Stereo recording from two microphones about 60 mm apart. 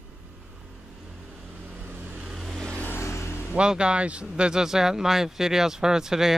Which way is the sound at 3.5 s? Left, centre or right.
Centre.